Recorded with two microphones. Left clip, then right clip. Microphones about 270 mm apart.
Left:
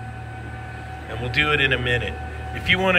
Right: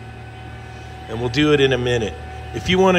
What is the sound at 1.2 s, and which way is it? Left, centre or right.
A man's voice, centre.